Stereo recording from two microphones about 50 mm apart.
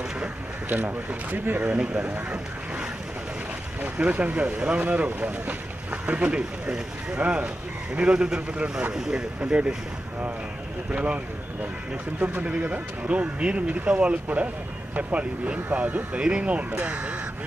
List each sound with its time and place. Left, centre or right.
0.7 s speech: right
3.8 s speech: right
10.9 s speech: right
12.4 s speech: right